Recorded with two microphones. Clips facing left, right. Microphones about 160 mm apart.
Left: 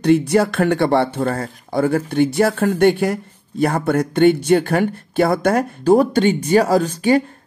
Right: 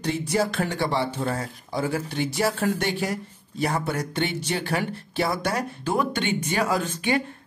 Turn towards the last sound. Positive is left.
turn(degrees=40)  # may be behind; listen again after turning